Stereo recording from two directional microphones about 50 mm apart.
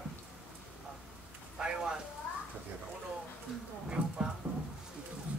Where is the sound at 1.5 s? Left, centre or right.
Centre.